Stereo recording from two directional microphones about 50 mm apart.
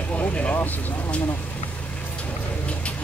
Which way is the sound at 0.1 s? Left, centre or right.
Left.